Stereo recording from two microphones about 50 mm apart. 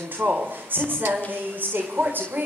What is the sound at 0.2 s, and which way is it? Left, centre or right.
Speech, right.